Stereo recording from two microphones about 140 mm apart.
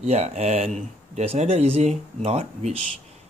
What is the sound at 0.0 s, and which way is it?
Speech, 50° right (ahead or behind).